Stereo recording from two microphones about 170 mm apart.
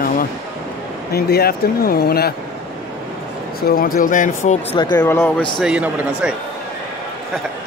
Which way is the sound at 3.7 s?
55° left (ahead or behind).